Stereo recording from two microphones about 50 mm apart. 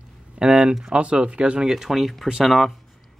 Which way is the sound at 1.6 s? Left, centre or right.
Centre.